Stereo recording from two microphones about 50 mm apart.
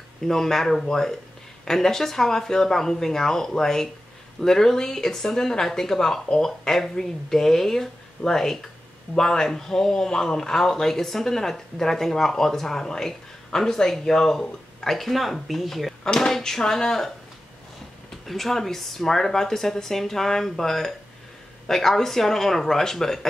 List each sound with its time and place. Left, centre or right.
0.2 s speech: centre
18.2 s speech: centre